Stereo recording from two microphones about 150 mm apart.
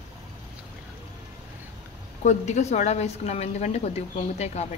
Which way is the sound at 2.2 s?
55° left (ahead or behind).